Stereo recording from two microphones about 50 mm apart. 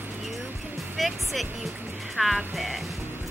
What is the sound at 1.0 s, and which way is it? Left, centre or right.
Speech, centre.